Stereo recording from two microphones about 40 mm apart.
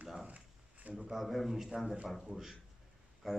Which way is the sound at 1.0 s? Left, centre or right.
Centre.